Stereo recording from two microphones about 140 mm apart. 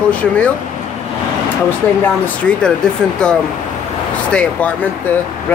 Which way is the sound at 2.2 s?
5° left (ahead or behind).